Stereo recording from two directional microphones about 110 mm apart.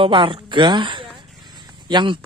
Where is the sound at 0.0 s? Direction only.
50° right (ahead or behind).